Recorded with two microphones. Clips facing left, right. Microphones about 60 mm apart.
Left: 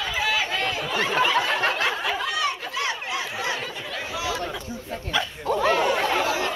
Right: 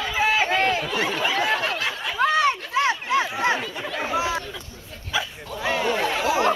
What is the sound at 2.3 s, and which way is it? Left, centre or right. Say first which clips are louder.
Run: right 6 dB; right.